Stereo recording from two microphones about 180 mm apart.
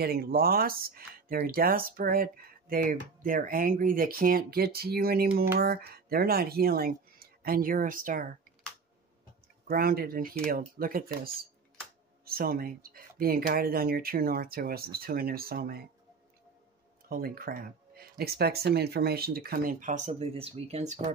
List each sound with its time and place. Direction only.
0.0 s speech: 60° right (ahead or behind)
9.7 s speech: 55° right (ahead or behind)
17.1 s speech: 55° right (ahead or behind); by 21.1 s 40° right (ahead or behind)